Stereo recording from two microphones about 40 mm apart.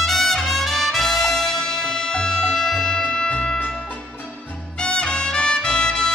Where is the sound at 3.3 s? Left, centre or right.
Left.